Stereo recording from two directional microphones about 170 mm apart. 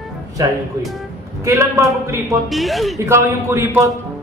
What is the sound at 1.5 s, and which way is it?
Speech, 20° right (ahead or behind).